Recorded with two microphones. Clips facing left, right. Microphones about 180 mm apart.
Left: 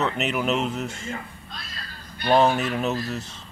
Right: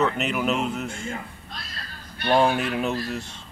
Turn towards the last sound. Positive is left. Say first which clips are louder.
# even
turn(degrees=5)  # may be behind; listen again after turning